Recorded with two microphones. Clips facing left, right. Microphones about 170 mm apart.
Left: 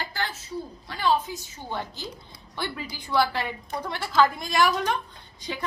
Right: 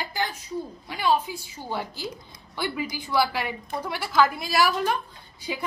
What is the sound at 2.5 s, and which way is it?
A woman's voice, 10° right (ahead or behind).